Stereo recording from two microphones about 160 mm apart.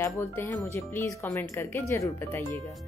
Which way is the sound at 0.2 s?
15° left (ahead or behind).